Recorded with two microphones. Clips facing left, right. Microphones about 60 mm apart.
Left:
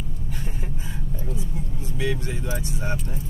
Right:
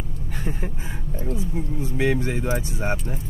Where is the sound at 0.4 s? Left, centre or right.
Right.